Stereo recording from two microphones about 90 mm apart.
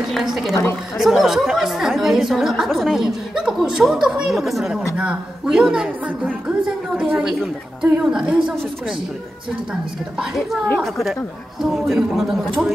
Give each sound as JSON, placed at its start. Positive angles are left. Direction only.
{"t": 0.1, "sound": "a woman's voice", "side_deg": -5}
{"t": 10.8, "sound": "speech", "side_deg": 0}